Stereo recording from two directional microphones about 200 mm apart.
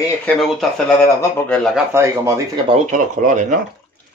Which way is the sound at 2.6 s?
40° right (ahead or behind).